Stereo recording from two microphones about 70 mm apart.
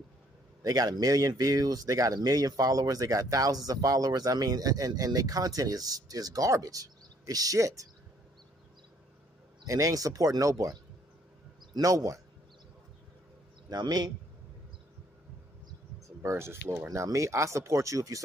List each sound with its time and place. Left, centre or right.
0.7 s speech: right
9.7 s speech: right
13.7 s speech: right
16.2 s speech: right
16.9 s speech: right